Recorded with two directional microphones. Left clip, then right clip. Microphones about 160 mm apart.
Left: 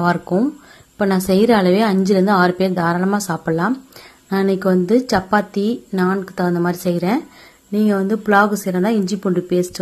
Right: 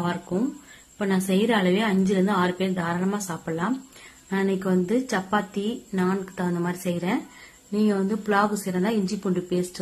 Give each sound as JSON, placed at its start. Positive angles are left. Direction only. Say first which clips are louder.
{"t": 0.9, "sound": "a woman's voice", "louder": "left 9 dB", "side_deg": 45}